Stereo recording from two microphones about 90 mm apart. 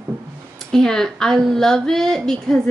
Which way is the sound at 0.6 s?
5° left (ahead or behind).